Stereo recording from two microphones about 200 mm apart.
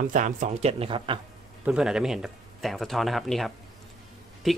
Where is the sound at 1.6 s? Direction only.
5° right (ahead or behind).